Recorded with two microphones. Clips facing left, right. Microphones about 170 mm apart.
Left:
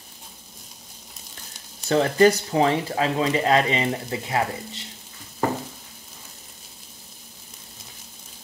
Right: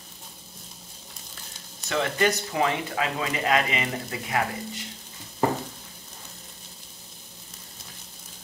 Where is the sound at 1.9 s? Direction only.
35° left (ahead or behind).